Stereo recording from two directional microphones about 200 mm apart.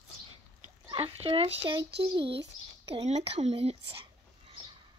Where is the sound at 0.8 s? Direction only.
25° right (ahead or behind).